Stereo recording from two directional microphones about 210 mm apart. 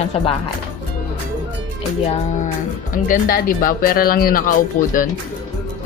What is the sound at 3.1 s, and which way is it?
Speech, 45° left (ahead or behind).